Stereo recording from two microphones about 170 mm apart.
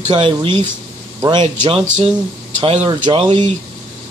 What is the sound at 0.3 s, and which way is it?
A man's voice, 25° right (ahead or behind).